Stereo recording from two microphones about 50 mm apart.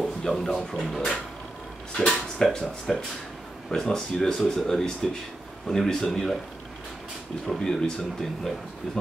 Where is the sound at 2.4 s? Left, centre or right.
Centre.